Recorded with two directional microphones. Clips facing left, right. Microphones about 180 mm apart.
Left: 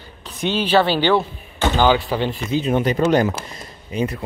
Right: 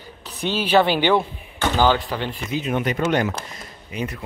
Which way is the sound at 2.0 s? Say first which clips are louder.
Left 5 dB; 25° left (ahead or behind).